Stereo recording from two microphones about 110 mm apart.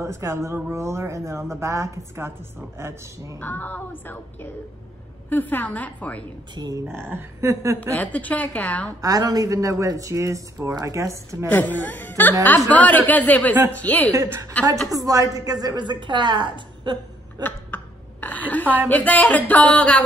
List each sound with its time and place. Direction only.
0.0 s a woman's voice: 25° right (ahead or behind)
3.3 s music: 15° left (ahead or behind)
6.5 s speech: 40° right (ahead or behind)
6.9 s a woman's voice: 20° right (ahead or behind)
7.9 s music: 15° left (ahead or behind)
9.0 s speech: 35° right (ahead or behind)
11.4 s music: 15° left (ahead or behind)
14.1 s a woman's voice: 30° right (ahead or behind)
17.4 s a sound: 15° left (ahead or behind)
18.9 s music: 15° left (ahead or behind)